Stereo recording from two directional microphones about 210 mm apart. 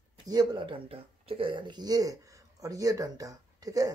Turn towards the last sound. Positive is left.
turn(degrees=-15)  # may be behind; listen again after turning